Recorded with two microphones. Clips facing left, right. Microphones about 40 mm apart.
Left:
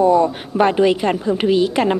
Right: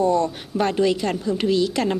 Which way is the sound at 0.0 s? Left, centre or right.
Centre.